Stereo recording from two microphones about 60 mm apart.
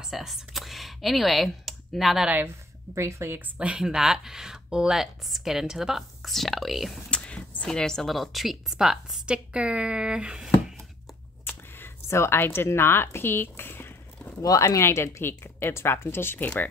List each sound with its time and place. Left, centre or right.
0.0 s speech: centre
2.9 s a woman's voice: right
3.3 s a woman's voice: right
3.8 s speech: centre
7.1 s speech: centre
12.1 s speech: left
14.4 s speech: left
14.8 s speech: left